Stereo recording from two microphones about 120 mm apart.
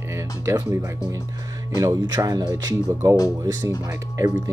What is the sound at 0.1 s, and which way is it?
Speech, 25° right (ahead or behind).